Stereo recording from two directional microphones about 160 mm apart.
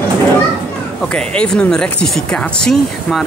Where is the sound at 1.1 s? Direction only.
5° left (ahead or behind).